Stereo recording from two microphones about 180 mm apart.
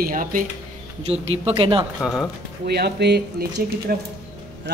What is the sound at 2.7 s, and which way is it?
A man's voice, 65° right (ahead or behind).